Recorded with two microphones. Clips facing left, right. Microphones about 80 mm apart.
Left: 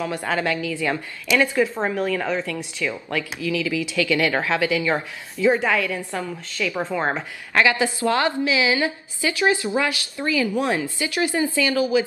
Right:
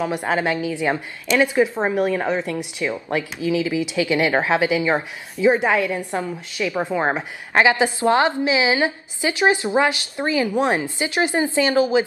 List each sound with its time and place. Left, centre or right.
0.0 s speech: right